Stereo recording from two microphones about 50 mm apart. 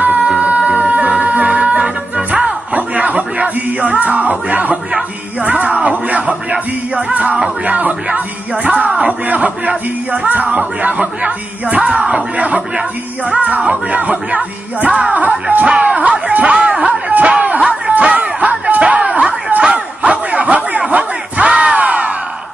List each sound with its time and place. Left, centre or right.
0.4 s music: right
13.7 s music: right
17.1 s a sound: right